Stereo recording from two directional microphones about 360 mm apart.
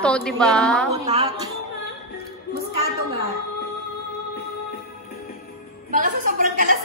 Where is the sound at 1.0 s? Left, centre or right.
Centre.